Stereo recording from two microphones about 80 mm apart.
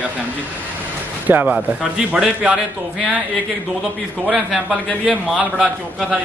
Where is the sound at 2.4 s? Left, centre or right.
Centre.